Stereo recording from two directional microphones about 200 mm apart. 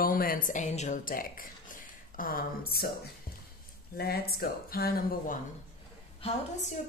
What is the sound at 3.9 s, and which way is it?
Speech, 50° left (ahead or behind).